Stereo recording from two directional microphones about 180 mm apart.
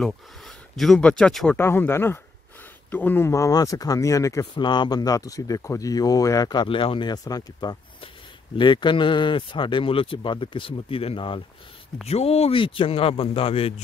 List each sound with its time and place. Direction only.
0.0 s speech: centre (ahead or behind); by 13.7 s 30° left (ahead or behind)